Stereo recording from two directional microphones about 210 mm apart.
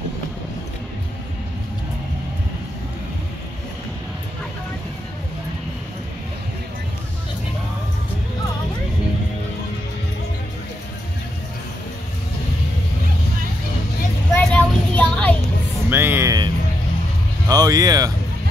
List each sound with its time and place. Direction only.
14.3 s child singing: 5° left (ahead or behind)
15.9 s a sound: 10° right (ahead or behind)
17.5 s music: 15° right (ahead or behind)